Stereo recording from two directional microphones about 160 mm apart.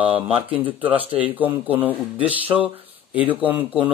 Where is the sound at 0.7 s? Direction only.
10° right (ahead or behind).